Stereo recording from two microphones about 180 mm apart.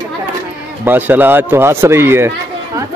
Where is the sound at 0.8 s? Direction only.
10° right (ahead or behind).